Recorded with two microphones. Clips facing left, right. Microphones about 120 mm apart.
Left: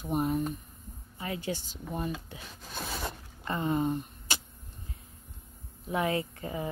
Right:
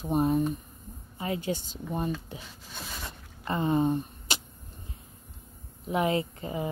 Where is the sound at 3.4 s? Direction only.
20° right (ahead or behind).